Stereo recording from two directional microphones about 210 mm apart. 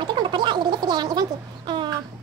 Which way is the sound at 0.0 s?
20° right (ahead or behind).